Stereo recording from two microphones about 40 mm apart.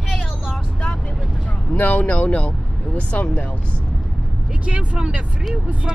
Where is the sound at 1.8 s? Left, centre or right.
Left.